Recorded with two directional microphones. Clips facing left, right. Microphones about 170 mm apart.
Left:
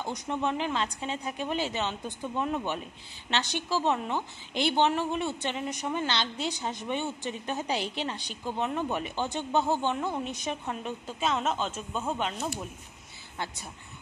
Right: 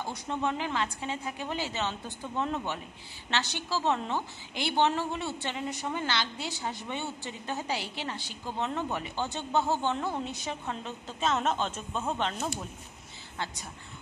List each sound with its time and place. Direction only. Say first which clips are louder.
0.0 s a woman's voice: left 1 dB; 15° left (ahead or behind)